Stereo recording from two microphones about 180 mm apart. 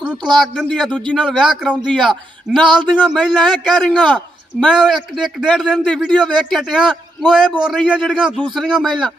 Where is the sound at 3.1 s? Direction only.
Centre (ahead or behind).